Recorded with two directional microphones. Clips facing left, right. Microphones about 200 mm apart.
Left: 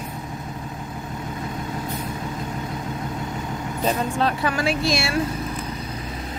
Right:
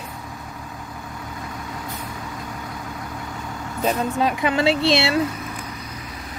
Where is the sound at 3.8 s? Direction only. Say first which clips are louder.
Right 1 dB; 15° right (ahead or behind).